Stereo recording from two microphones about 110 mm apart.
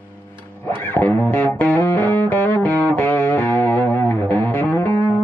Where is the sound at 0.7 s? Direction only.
20° left (ahead or behind).